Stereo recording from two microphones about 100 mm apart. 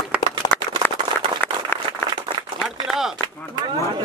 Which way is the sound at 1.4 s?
20° left (ahead or behind).